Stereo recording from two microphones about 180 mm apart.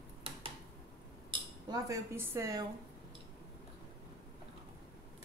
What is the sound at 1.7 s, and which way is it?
Speech, 20° right (ahead or behind).